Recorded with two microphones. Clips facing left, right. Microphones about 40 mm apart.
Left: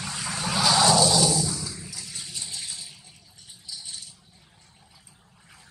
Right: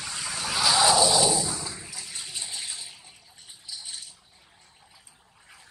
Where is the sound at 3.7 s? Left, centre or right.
Centre.